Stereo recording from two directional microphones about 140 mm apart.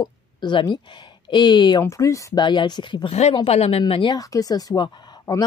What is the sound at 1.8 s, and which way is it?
A woman's voice, 20° left (ahead or behind).